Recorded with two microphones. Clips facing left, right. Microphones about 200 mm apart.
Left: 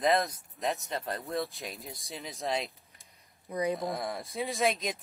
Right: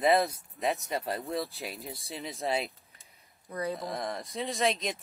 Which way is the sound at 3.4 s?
15° left (ahead or behind).